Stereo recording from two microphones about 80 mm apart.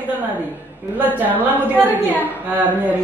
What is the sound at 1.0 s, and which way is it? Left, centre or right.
Speech, right.